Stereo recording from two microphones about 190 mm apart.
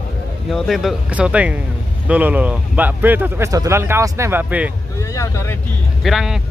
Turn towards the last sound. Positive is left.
turn(degrees=0)  # may be behind; listen again after turning